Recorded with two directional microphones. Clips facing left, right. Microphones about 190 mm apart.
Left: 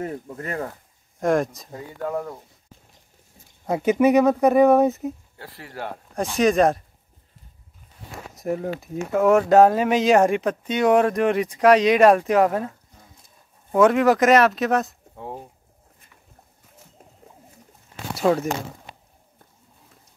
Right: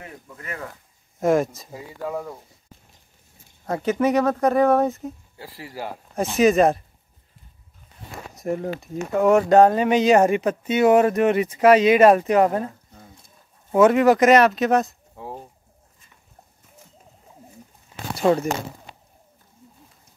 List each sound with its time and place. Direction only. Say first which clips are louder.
0.0 s speech: left 10 dB; 40° left (ahead or behind)
1.2 s speech: right 1 dB; 5° right (ahead or behind)
3.6 s speech: left 3 dB; 15° left (ahead or behind)
5.0 s speech: left 4 dB; 5° right (ahead or behind)
8.4 s speech: even; centre (ahead or behind)
18.1 s speech: right 1 dB; centre (ahead or behind)